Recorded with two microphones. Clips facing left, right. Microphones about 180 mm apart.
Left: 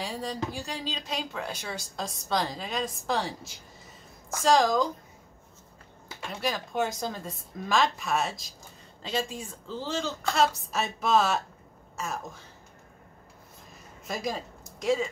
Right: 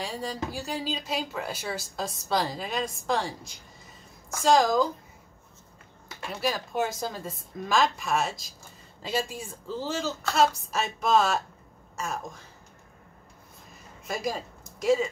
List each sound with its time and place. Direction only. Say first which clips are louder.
0.0 s speech: even; centre (ahead or behind)
6.4 s speech: right 1 dB; 5° right (ahead or behind)
14.0 s speech: right 1 dB; centre (ahead or behind)